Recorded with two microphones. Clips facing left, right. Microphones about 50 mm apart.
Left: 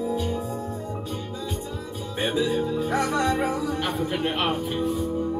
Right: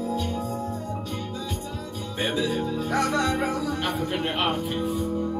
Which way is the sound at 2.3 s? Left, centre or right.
Centre.